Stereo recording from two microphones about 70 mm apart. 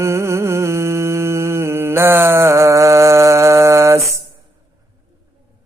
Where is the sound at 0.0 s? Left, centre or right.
Right.